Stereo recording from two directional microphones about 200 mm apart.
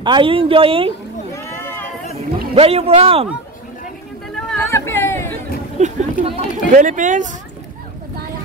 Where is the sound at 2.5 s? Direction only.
30° right (ahead or behind).